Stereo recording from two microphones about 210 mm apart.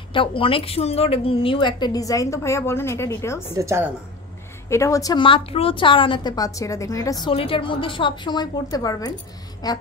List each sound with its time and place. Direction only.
0.1 s a woman's voice: 25° left (ahead or behind)
3.5 s a woman's voice: 15° right (ahead or behind)
4.6 s a woman's voice: 15° left (ahead or behind)